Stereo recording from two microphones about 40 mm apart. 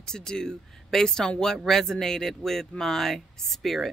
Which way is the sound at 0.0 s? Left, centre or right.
Centre.